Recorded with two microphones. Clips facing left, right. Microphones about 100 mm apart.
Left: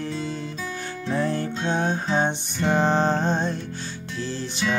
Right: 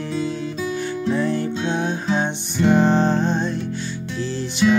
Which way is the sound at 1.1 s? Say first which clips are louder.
Right 1 dB; 40° left (ahead or behind).